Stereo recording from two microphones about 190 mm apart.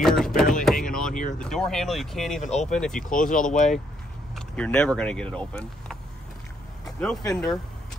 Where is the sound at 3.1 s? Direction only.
45° left (ahead or behind).